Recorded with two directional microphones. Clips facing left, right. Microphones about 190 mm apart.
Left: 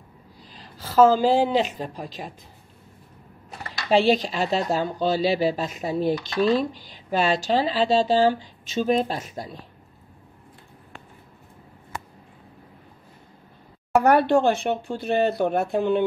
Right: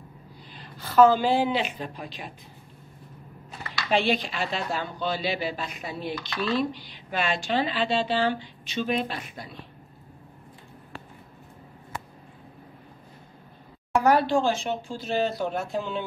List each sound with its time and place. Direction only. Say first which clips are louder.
1.1 s speech: left 4 dB; 40° left (ahead or behind)
3.9 s speech: left 6 dB; 40° left (ahead or behind)
13.9 s speech: left 4 dB; 60° left (ahead or behind)